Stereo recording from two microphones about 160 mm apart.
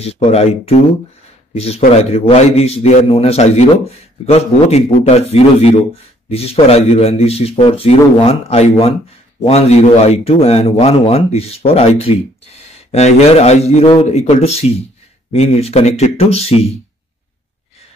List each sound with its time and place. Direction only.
0.0 s speech: 40° left (ahead or behind)